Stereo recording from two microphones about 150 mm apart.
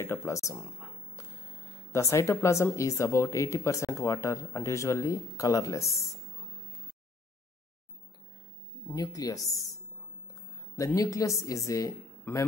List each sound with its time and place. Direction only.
0.0 s a sound: 20° left (ahead or behind)
1.9 s speech: 20° left (ahead or behind)
8.8 s speech: 25° left (ahead or behind)
10.8 s speech: 20° left (ahead or behind)